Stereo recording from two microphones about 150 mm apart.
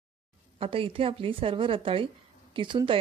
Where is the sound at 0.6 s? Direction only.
40° right (ahead or behind).